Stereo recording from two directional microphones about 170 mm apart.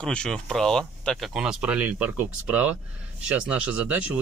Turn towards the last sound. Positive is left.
turn(degrees=-10)  # may be behind; listen again after turning